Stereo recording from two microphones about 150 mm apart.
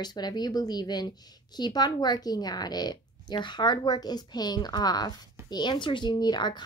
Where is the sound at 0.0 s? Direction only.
25° left (ahead or behind).